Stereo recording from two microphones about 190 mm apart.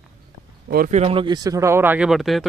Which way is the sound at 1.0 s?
25° right (ahead or behind).